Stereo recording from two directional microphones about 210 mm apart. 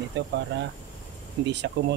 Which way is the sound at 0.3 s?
55° right (ahead or behind).